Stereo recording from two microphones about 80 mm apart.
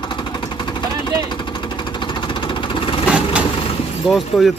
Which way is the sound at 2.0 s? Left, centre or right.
Left.